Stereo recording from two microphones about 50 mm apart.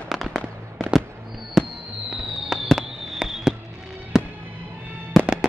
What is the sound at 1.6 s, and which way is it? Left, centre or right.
Fireworks, centre.